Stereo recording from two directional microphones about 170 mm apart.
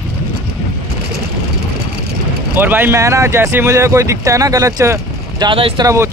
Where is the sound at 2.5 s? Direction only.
10° right (ahead or behind).